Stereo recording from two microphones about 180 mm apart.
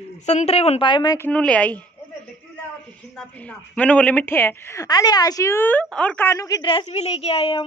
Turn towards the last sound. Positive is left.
turn(degrees=35)  # may be behind; listen again after turning